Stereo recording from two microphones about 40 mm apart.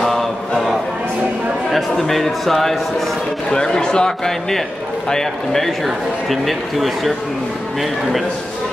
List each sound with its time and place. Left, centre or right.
0.0 s a sound: centre
1.7 s speech: centre
3.4 s a man's voice: centre